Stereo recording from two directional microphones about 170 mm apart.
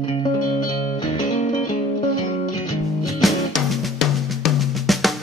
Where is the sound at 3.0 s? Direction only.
Centre (ahead or behind).